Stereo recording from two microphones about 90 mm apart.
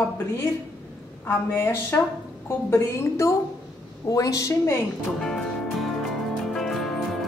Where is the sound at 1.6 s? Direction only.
30° left (ahead or behind).